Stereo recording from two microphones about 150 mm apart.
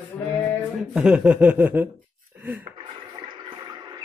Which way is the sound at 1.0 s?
10° right (ahead or behind).